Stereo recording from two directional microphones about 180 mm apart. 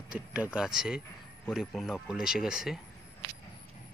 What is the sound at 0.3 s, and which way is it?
Speech, 5° right (ahead or behind).